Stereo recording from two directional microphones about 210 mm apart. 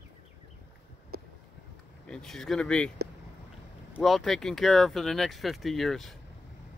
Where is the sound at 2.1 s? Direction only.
5° left (ahead or behind).